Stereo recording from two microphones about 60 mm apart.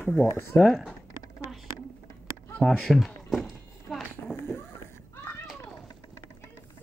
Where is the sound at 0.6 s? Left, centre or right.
Centre.